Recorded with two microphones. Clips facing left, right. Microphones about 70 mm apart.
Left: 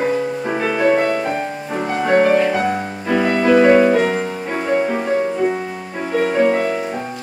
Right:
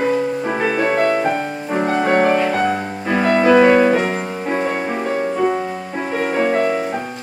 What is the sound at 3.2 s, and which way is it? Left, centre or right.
Music, right.